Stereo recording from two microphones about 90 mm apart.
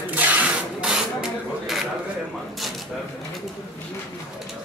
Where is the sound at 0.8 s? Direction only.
5° right (ahead or behind).